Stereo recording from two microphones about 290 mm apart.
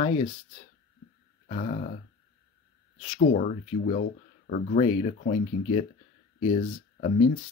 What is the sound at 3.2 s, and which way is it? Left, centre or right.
Speech, left.